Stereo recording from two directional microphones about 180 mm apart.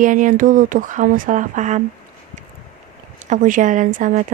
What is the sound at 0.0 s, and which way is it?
Speech, 45° right (ahead or behind).